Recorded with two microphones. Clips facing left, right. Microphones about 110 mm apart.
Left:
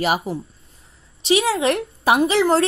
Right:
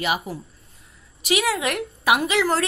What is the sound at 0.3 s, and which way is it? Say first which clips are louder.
A woman's voice: left 6 dB; 30° left (ahead or behind).